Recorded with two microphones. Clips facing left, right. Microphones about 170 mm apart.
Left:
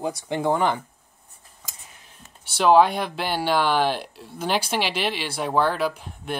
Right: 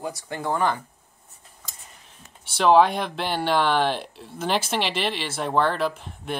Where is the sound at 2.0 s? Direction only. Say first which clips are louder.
Even; 5° left (ahead or behind).